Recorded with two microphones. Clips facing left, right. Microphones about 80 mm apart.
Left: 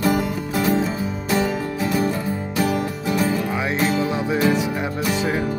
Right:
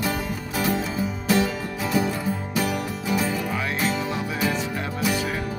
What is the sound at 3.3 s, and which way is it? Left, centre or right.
Music, centre.